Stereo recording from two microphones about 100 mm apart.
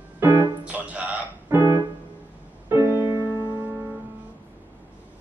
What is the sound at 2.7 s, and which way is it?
Music, 25° right (ahead or behind).